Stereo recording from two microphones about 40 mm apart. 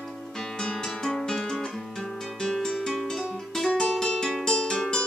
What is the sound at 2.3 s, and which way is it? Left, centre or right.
Music, centre.